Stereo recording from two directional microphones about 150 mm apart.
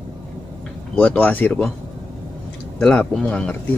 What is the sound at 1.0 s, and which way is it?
Speech, 10° left (ahead or behind).